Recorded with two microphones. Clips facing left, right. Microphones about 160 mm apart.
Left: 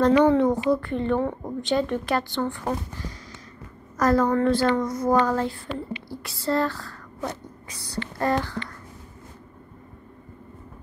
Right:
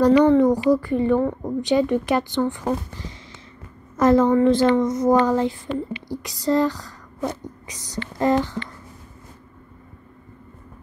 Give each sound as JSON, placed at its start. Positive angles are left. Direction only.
{"t": 0.0, "sound": "speech", "side_deg": -10}
{"t": 3.9, "sound": "a woman's voice", "side_deg": -25}